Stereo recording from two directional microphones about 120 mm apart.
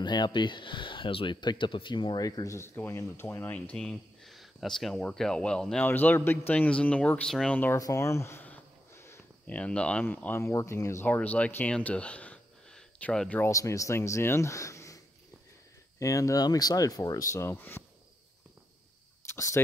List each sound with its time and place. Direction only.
0.0 s speech: 40° left (ahead or behind); by 7.8 s 15° left (ahead or behind)
7.8 s a sound: 25° left (ahead or behind)
9.5 s speech: 10° left (ahead or behind)
11.1 s speech: 10° left (ahead or behind)
13.4 s speech: 25° left (ahead or behind)
16.0 s speech: 25° left (ahead or behind)
19.2 s fowl: 25° left (ahead or behind)